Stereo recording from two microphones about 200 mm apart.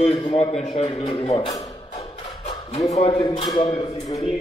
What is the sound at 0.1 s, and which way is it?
A man's voice, 25° left (ahead or behind).